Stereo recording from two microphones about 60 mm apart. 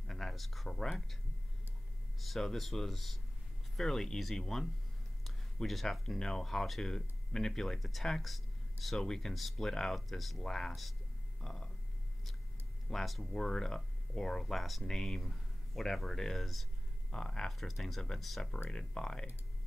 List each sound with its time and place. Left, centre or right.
0.0 s a sound: centre
0.7 s speech: centre
2.1 s speech: centre
10.7 s a sound: centre
11.4 s speech: centre
12.9 s speech: centre
17.6 s speech: centre